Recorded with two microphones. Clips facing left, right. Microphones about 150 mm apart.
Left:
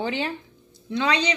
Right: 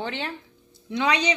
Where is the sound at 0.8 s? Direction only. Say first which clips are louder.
Even; 15° right (ahead or behind).